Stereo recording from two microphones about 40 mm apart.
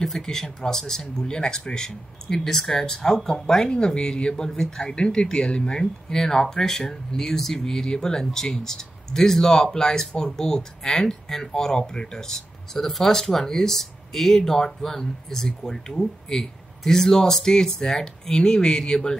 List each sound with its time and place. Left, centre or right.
0.0 s speech: centre